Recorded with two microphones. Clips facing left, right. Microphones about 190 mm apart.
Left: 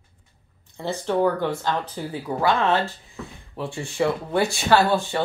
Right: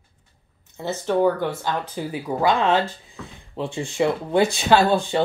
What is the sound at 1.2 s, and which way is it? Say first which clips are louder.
Speech: right 2 dB; 10° right (ahead or behind).